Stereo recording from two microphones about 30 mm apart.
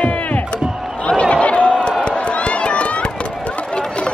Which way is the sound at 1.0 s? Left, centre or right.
Left.